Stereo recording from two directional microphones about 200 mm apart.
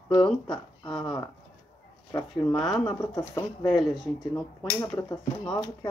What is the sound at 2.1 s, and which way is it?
Speech, 15° left (ahead or behind).